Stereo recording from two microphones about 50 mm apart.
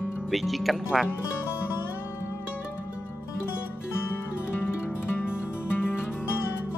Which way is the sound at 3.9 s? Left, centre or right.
Left.